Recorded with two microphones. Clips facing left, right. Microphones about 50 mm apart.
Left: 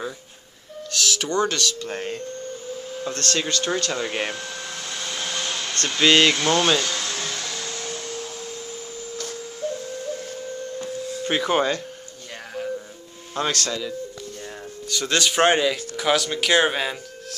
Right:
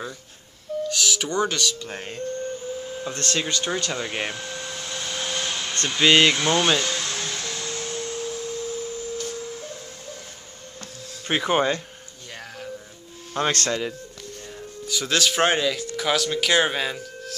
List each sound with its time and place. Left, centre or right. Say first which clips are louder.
0.8 s speech: left 3 dB; centre
3.1 s speech: left 2 dB; centre
3.9 s speech: left 2 dB; centre
7.1 s music: left 1 dB; left
10.8 s a sound: left 8 dB; centre
11.2 s speech: even; centre
13.5 s speech: right 3 dB; right
14.9 s speech: even; centre